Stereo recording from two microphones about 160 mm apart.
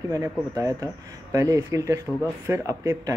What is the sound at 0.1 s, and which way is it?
Speech, 20° right (ahead or behind).